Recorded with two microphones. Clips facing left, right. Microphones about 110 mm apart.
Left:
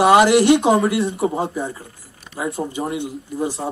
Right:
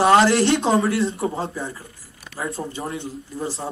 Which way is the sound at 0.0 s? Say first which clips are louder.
Left 3 dB; 15° left (ahead or behind).